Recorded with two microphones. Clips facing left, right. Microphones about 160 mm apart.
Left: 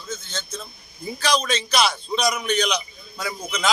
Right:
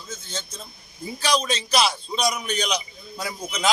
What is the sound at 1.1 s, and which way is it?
Speech, 30° right (ahead or behind).